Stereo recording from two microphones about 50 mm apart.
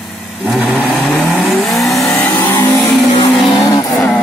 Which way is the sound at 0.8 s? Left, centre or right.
Centre.